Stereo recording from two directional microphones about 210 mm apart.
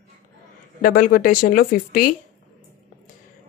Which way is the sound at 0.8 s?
45° left (ahead or behind).